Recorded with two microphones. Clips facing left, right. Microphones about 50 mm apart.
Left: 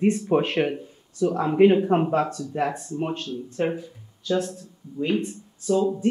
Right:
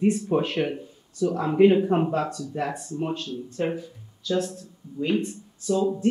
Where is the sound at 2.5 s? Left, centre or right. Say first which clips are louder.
Left 4 dB; left.